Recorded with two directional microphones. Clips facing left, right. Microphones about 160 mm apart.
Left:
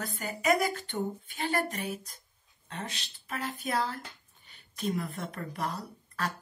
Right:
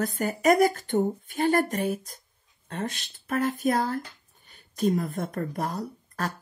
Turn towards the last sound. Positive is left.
turn(degrees=-45)  # may be behind; listen again after turning